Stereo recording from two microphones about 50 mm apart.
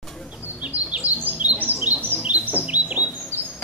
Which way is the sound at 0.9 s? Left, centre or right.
Right.